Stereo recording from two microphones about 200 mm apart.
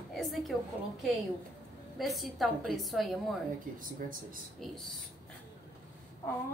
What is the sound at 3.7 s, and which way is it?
Speech, 45° right (ahead or behind).